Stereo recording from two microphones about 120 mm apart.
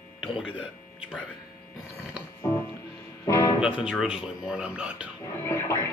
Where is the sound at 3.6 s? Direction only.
10° right (ahead or behind).